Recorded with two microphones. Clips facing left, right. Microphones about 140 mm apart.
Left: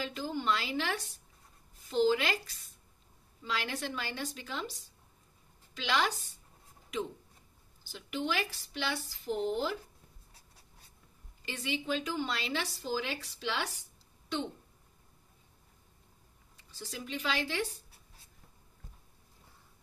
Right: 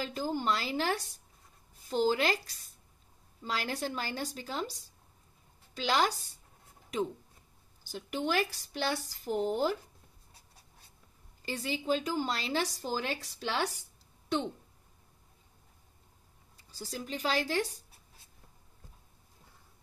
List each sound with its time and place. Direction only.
0.0 s speech: 40° right (ahead or behind)
7.8 s speech: 45° right (ahead or behind)
11.4 s speech: 40° right (ahead or behind)
16.7 s speech: 35° right (ahead or behind)